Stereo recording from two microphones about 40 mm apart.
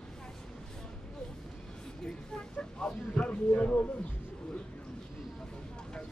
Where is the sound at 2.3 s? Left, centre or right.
Left.